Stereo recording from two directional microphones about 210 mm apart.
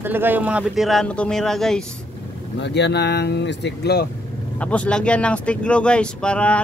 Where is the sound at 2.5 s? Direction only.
55° left (ahead or behind).